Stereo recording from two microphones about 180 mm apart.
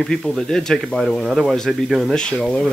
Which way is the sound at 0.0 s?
Centre (ahead or behind).